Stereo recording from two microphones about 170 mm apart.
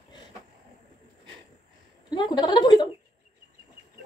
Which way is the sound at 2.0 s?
25° left (ahead or behind).